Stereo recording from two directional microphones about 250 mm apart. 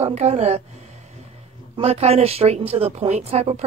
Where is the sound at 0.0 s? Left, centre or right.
Right.